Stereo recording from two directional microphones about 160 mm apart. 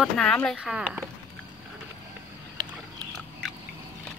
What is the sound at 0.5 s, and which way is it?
Speech, 5° right (ahead or behind).